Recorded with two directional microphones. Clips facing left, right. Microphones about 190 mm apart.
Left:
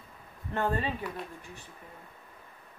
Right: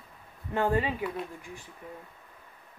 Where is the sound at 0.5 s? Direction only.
10° right (ahead or behind).